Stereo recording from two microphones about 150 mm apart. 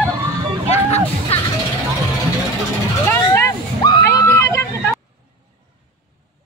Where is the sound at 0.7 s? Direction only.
45° left (ahead or behind).